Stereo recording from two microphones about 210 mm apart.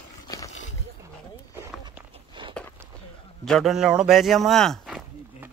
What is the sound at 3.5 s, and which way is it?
Speech, centre (ahead or behind).